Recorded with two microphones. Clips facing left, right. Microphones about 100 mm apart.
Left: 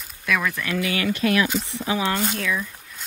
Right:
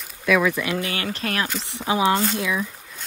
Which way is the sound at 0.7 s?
35° right (ahead or behind).